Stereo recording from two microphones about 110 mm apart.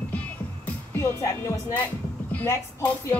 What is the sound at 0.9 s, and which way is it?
Music, 30° left (ahead or behind).